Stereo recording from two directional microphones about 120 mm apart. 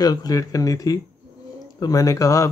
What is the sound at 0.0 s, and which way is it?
Speech, 30° left (ahead or behind).